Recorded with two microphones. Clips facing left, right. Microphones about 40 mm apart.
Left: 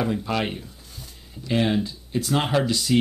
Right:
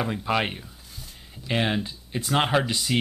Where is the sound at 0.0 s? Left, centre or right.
Centre.